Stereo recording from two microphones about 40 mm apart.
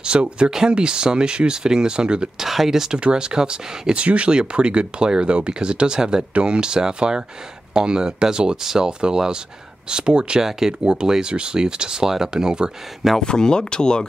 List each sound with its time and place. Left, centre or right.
0.0 s speech: right
2.3 s speech: centre
3.9 s speech: right
13.2 s speech: centre